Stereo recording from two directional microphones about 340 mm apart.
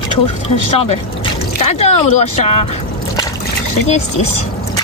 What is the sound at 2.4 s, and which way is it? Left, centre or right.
Speech, centre.